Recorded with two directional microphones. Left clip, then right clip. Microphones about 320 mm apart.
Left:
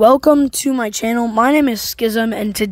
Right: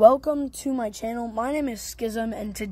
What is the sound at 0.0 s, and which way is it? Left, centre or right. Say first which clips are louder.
Speech: left 7 dB; left.